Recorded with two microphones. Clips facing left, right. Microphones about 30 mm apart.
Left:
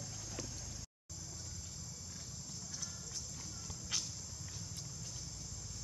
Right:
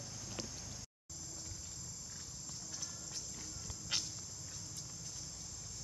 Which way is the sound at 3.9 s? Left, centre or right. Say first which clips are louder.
Right 2 dB; right.